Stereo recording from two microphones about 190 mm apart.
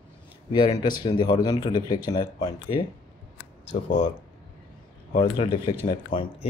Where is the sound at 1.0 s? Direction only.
25° left (ahead or behind).